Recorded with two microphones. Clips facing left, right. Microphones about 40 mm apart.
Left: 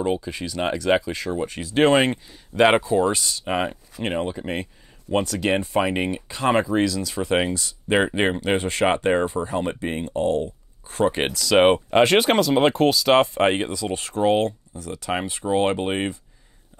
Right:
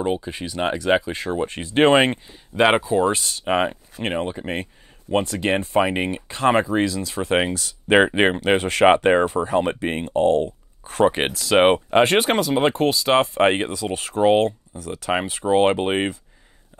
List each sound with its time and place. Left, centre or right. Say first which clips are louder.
0.0 s speech: even; right
2.6 s speech: even; centre
3.1 s speech: right 1 dB; right
3.4 s speech: right 5 dB; right
5.8 s speech: right 2 dB; centre
6.2 s speech: right 6 dB; right
6.5 s speech: left 2 dB; right
8.5 s speech: right 2 dB; right
8.8 s speech: right 6 dB; right
9.2 s speech: right 4 dB; right
11.1 s speech: even; right
13.9 s speech: right 2 dB; right
14.2 s speech: right 3 dB; centre
14.9 s speech: right 3 dB; right